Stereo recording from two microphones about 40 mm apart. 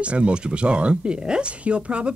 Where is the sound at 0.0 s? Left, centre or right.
Right.